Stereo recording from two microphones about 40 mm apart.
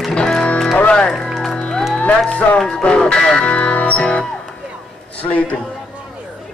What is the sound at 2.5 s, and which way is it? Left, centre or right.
Music, left.